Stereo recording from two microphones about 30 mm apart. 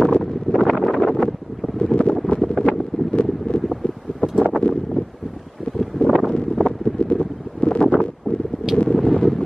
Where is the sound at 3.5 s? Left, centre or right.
Left.